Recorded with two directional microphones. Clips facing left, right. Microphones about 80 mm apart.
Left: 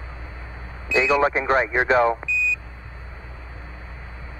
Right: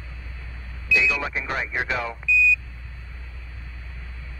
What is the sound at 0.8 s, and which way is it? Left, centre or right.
A man's voice, left.